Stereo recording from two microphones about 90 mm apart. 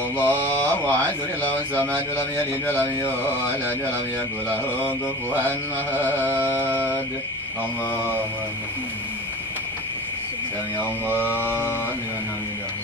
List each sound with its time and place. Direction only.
0.2 s speech: 20° left (ahead or behind)
3.4 s mantra: 20° right (ahead or behind)
4.5 s speech: 20° left (ahead or behind)
11.1 s mantra: 20° right (ahead or behind)
11.3 s speech: 20° left (ahead or behind)